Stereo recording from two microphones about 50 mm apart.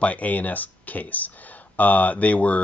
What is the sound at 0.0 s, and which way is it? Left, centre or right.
Speech, left.